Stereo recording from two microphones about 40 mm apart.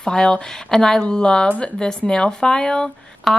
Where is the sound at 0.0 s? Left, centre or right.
Left.